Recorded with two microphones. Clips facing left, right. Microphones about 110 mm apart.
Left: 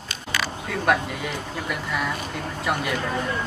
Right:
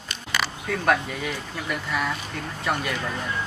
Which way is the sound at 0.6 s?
5° left (ahead or behind).